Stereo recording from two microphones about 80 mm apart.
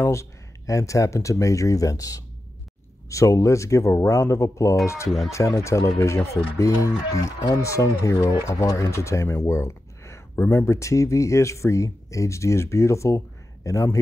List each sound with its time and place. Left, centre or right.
0.0 s speech: left
10.3 s speech: left
10.6 s a man's voice: left